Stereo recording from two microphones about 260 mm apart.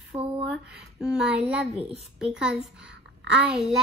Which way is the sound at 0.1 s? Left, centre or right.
Right.